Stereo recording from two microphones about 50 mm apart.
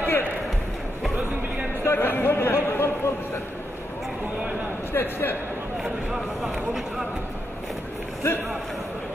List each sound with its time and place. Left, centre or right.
0.0 s basketball bounce: left
1.9 s a sound: left
4.9 s a man's voice: left
8.2 s a man's voice: left